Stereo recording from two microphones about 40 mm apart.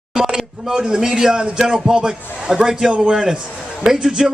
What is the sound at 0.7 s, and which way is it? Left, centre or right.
A man's voice, centre.